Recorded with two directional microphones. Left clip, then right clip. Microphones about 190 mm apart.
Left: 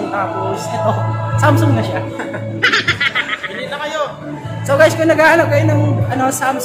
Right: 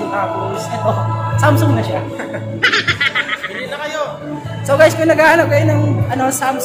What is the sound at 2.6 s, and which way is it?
Music, centre (ahead or behind).